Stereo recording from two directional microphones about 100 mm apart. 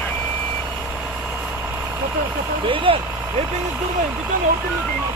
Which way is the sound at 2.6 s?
60° right (ahead or behind).